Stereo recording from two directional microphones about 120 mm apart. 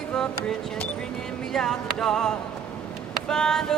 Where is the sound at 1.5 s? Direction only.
5° left (ahead or behind).